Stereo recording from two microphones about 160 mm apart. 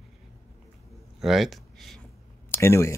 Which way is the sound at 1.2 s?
Centre (ahead or behind).